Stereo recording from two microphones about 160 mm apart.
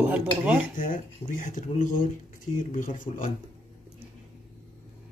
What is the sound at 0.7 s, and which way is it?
Speech, 60° left (ahead or behind).